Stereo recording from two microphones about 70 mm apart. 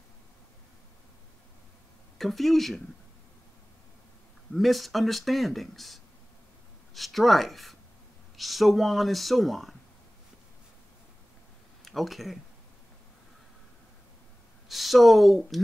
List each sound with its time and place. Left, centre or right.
2.1 s speech: centre
4.6 s speech: centre
11.8 s speech: centre
14.7 s speech: centre